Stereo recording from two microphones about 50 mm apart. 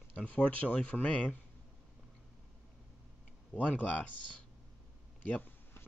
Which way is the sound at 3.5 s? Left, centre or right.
Left.